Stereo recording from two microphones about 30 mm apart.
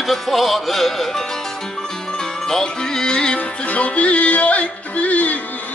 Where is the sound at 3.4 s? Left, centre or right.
Left.